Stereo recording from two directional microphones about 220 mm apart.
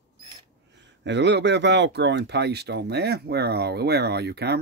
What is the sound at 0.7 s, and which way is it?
A man's voice, 55° right (ahead or behind).